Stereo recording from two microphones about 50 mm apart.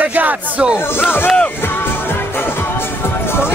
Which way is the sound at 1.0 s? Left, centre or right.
Left.